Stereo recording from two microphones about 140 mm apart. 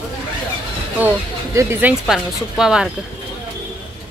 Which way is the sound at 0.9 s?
15° right (ahead or behind).